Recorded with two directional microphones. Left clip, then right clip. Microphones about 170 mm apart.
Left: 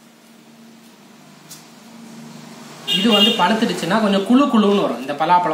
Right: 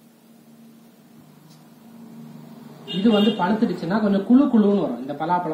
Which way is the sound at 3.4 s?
10° left (ahead or behind).